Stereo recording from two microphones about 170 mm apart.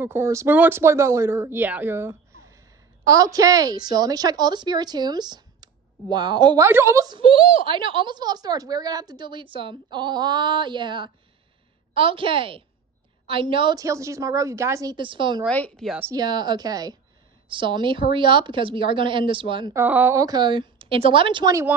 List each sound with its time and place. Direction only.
0.0 s a woman's voice: 15° right (ahead or behind)
7.2 s a woman's voice: 30° right (ahead or behind)
15.4 s speech: 5° left (ahead or behind)
16.0 s a woman's voice: 20° right (ahead or behind)
19.7 s a woman's voice: 10° right (ahead or behind)